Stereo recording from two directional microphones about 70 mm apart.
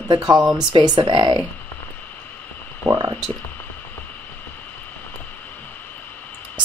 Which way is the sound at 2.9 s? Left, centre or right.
Right.